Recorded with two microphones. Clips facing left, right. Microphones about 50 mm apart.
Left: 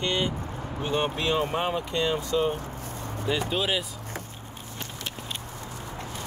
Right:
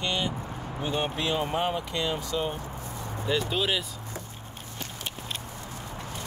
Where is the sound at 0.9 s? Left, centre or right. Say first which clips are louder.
Left 3 dB; left.